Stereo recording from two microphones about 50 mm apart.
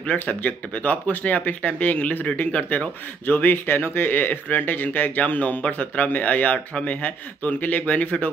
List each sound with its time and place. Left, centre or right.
0.2 s speech: left
3.6 s speech: left